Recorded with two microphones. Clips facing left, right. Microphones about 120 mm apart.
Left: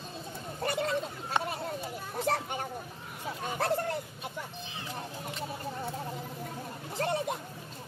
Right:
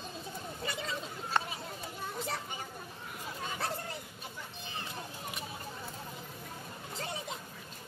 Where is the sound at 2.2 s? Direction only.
55° left (ahead or behind).